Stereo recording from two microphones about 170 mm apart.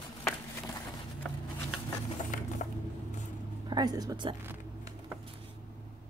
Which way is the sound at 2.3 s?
45° left (ahead or behind).